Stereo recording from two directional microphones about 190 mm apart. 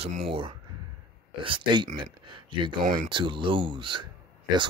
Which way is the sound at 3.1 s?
25° right (ahead or behind).